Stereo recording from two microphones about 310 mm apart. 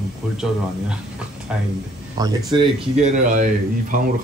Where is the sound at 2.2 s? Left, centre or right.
Centre.